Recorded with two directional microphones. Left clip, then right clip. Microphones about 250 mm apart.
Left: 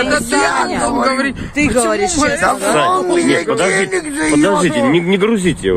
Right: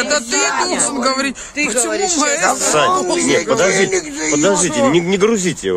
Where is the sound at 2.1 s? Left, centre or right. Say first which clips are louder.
Left 2 dB; right.